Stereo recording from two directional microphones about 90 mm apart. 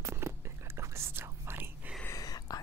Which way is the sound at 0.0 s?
30° right (ahead or behind).